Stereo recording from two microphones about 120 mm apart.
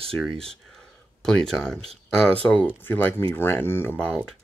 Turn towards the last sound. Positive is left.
turn(degrees=15)  # may be behind; listen again after turning